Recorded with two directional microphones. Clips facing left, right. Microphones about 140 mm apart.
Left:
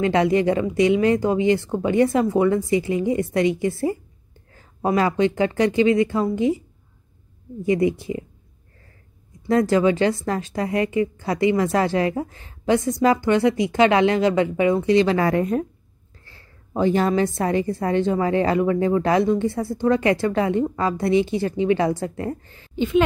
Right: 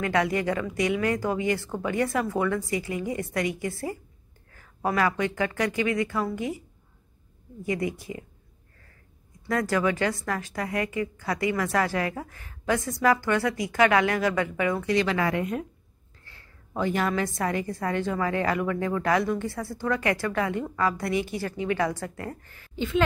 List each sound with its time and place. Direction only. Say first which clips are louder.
0.0 s a woman's voice: left 7 dB; 25° left (ahead or behind)
7.6 s a woman's voice: left 9 dB; 25° left (ahead or behind)
9.5 s a woman's voice: left 7 dB; 25° left (ahead or behind)